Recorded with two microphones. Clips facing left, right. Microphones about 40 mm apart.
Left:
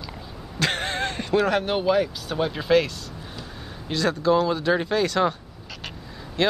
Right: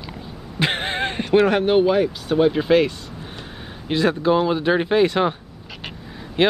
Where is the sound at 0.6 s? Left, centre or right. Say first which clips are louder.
Right 3 dB; right.